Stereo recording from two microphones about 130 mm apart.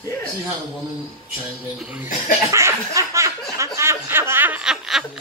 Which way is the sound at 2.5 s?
20° right (ahead or behind).